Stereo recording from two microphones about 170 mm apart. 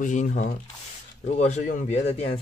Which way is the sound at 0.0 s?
45° left (ahead or behind).